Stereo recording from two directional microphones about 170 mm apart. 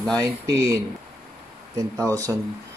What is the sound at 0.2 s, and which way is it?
Speech, 20° right (ahead or behind).